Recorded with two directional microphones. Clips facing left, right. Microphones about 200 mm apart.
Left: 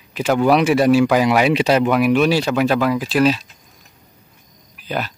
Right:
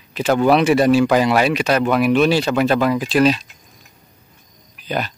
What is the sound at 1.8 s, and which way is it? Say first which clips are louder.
Speech: even; 10° left (ahead or behind).